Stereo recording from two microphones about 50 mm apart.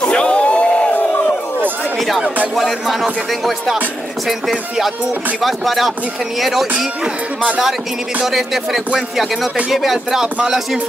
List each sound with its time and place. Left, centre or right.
0.0 s a sound: left
2.0 s speech: centre
2.5 s music: centre
8.3 s music: centre